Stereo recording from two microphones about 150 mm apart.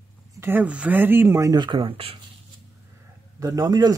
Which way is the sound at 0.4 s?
15° right (ahead or behind).